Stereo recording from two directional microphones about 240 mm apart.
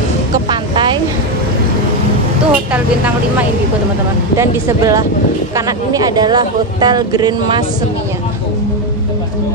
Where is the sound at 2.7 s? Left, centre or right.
Centre.